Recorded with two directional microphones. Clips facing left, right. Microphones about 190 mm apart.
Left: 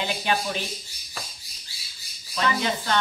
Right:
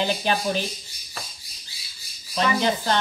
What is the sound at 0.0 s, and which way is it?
Speech, 35° right (ahead or behind).